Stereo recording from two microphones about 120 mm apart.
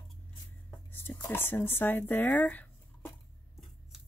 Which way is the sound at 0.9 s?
15° left (ahead or behind).